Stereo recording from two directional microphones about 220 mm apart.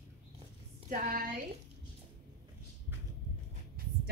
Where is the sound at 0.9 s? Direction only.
40° right (ahead or behind).